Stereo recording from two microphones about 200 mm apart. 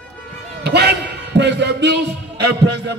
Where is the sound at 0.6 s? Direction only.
55° right (ahead or behind).